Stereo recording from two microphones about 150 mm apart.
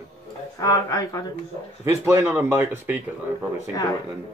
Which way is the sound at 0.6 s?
25° left (ahead or behind).